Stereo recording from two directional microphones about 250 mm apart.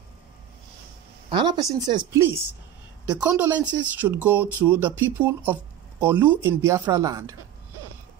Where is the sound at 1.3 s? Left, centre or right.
Centre.